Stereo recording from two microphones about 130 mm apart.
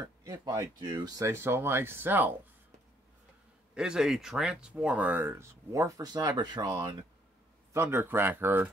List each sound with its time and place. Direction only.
0.2 s speech: 30° right (ahead or behind)
3.7 s speech: 5° right (ahead or behind); by 7.1 s 35° right (ahead or behind)
7.7 s speech: 20° right (ahead or behind)